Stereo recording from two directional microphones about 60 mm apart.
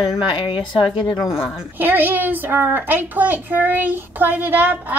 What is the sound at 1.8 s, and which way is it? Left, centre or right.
A child's voice, right.